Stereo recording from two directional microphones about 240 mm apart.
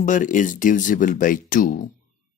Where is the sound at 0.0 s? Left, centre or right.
Left.